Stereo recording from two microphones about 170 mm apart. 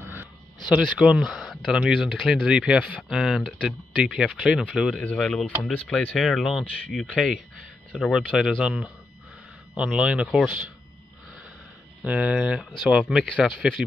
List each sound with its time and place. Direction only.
0.0 s a sound: 10° right (ahead or behind)
0.7 s speech: 5° right (ahead or behind)
12.0 s speech: 5° right (ahead or behind)